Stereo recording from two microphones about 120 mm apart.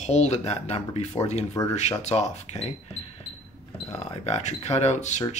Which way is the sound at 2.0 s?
70° left (ahead or behind).